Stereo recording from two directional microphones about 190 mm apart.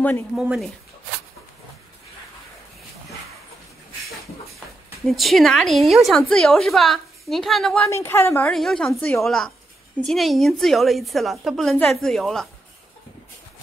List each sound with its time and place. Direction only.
0.4 s a woman's voice: 5° right (ahead or behind)
5.0 s a woman's voice: centre (ahead or behind)
7.9 s a woman's voice: 15° left (ahead or behind)